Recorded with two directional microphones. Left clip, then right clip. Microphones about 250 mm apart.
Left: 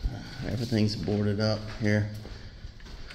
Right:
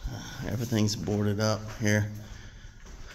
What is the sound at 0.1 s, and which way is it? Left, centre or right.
Speech, centre.